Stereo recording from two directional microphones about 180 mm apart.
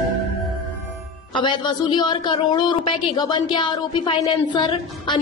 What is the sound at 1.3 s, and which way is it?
A woman's voice, 25° left (ahead or behind).